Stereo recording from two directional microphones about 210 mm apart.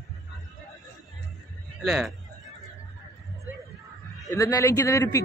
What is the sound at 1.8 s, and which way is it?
Speech, centre (ahead or behind).